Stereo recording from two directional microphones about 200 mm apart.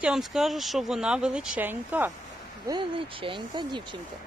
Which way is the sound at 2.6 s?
25° right (ahead or behind).